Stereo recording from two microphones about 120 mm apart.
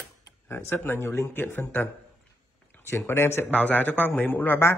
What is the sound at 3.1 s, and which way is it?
Speech, 20° left (ahead or behind).